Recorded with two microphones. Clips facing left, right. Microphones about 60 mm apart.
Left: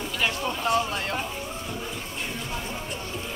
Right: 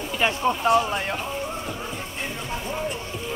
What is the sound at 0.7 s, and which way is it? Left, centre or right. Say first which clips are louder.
Speech: right 5 dB; right.